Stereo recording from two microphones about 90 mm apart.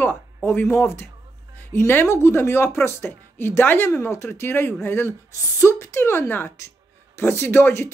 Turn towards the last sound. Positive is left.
turn(degrees=25)  # may be behind; listen again after turning